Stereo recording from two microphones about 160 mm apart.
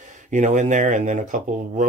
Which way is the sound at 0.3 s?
50° right (ahead or behind).